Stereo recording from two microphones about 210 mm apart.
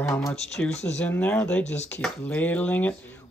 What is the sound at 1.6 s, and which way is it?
Speech, 35° left (ahead or behind).